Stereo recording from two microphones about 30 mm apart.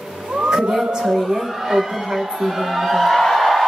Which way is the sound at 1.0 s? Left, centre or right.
Centre.